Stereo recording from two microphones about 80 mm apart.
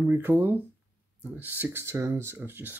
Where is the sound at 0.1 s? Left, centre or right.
Right.